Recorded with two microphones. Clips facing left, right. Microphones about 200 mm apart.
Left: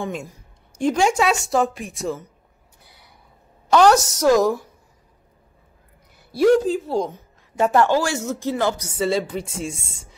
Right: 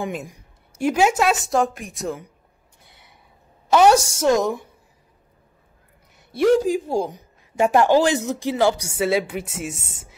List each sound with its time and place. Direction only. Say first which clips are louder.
0.0 s a woman's voice: even; 10° right (ahead or behind)
2.8 s a sound: left 1 dB; centre (ahead or behind)
3.7 s a woman's voice: even; 10° right (ahead or behind)
4.1 s a woman's voice: left 2 dB; 25° right (ahead or behind)
6.1 s a sound: left 2 dB; centre (ahead or behind)
6.6 s a woman's voice: even; 10° right (ahead or behind)